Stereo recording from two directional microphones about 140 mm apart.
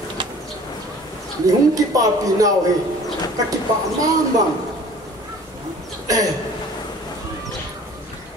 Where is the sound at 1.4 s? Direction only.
25° right (ahead or behind).